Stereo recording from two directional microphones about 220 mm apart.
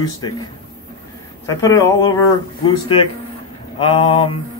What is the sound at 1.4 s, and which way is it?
Speech, 15° left (ahead or behind).